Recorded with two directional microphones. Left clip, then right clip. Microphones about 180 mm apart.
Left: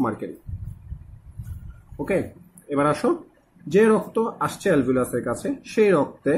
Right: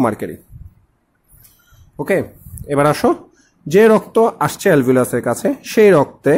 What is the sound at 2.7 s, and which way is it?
Speech, 55° right (ahead or behind).